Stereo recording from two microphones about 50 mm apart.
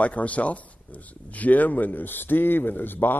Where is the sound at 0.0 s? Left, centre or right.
Left.